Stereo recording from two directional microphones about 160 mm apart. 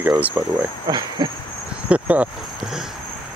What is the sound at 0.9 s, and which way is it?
Cricket, 25° right (ahead or behind).